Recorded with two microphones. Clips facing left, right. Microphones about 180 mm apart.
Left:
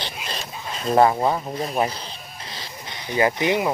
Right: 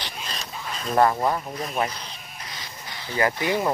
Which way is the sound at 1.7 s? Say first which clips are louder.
Left 3 dB; 30° left (ahead or behind).